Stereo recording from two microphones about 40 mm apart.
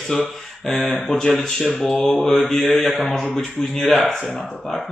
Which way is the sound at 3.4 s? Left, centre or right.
Centre.